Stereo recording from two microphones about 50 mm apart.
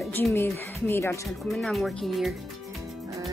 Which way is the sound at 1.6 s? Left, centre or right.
Centre.